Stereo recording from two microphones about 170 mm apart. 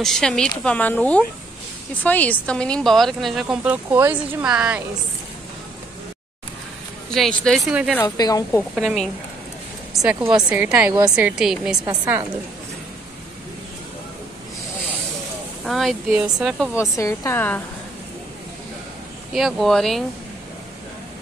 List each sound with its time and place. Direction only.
0.0 s a woman's voice: 5° left (ahead or behind)
7.2 s speech: 5° left (ahead or behind)
8.2 s a woman's voice: 20° left (ahead or behind)
8.7 s speech: centre (ahead or behind)
10.0 s speech: 10° right (ahead or behind)
11.8 s a woman's voice: 25° right (ahead or behind)
15.6 s speech: centre (ahead or behind)
16.7 s a woman's voice: 15° left (ahead or behind)
19.3 s speech: centre (ahead or behind)